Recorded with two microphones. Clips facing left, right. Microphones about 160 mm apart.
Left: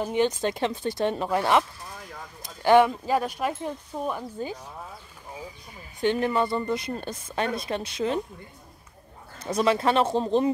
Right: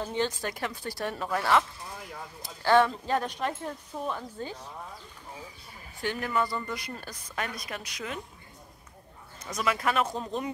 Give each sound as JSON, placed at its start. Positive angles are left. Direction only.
{"t": 0.0, "sound": "a woman's voice", "side_deg": 15}
{"t": 5.9, "sound": "a woman's voice", "side_deg": 25}
{"t": 9.4, "sound": "a woman's voice", "side_deg": 30}